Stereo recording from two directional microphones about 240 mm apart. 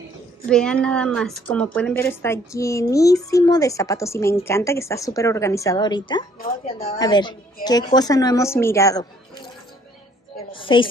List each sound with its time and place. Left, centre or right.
0.5 s a woman's voice: centre
10.5 s a woman's voice: left